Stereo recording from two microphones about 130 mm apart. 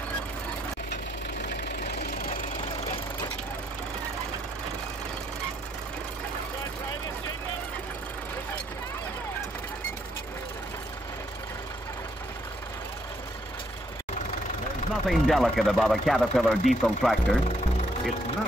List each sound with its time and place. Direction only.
2.1 s engine knocking: 90° left
15.0 s speech: centre (ahead or behind)